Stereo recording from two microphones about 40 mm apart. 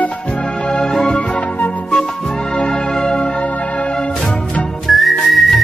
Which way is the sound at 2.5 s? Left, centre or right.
Centre.